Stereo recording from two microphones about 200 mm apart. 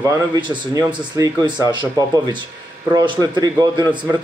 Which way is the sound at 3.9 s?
5° right (ahead or behind).